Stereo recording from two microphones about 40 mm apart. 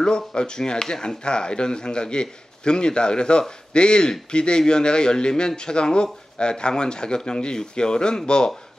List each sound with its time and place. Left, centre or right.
0.0 s speech: centre